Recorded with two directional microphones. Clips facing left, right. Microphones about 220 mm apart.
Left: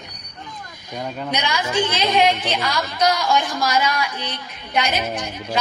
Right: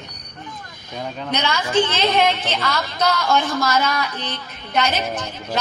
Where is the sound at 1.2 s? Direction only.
15° left (ahead or behind).